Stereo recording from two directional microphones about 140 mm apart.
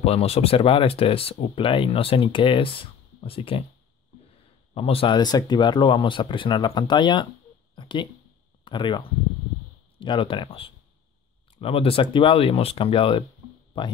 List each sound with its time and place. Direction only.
0.0 s speech: 45° left (ahead or behind)
4.7 s speech: 40° left (ahead or behind)